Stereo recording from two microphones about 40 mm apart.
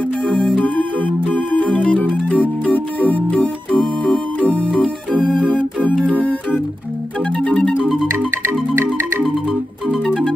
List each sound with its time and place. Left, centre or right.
0.6 s music: left
2.7 s organ: left
6.0 s music: left